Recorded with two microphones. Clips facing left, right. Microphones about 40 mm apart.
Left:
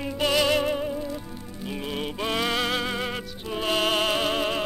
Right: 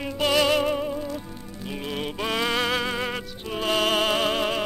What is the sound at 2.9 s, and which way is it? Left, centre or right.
Music, centre.